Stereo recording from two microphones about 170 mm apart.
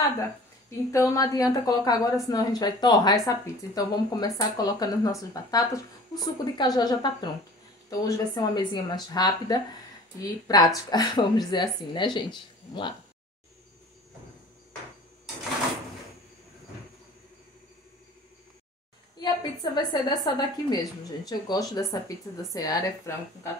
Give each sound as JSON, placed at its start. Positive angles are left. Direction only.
{"t": 0.7, "sound": "a woman's voice", "side_deg": 20}
{"t": 19.1, "sound": "a woman's voice", "side_deg": 25}